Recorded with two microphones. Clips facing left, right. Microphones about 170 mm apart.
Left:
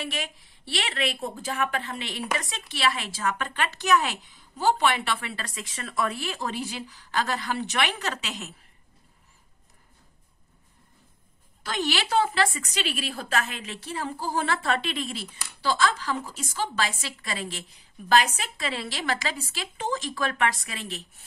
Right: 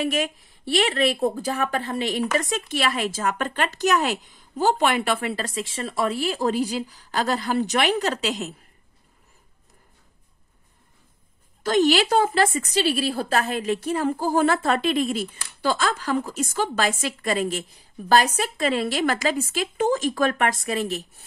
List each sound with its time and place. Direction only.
0.0 s speech: 45° right (ahead or behind)
11.6 s speech: 45° right (ahead or behind)